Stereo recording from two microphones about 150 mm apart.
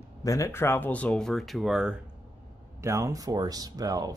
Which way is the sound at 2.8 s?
20° right (ahead or behind).